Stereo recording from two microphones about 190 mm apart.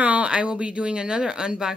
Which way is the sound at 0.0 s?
5° right (ahead or behind).